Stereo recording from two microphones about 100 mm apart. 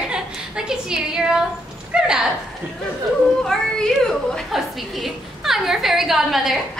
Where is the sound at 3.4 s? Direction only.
5° left (ahead or behind).